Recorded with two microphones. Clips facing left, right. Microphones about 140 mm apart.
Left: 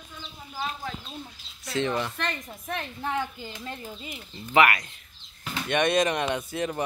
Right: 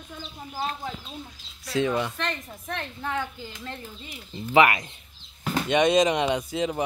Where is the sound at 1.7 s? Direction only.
10° right (ahead or behind).